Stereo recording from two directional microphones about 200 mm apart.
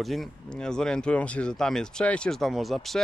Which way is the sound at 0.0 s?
Centre (ahead or behind).